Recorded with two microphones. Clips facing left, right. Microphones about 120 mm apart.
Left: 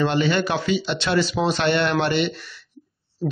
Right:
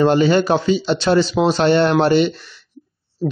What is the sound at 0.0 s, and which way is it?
A man's voice, 40° right (ahead or behind).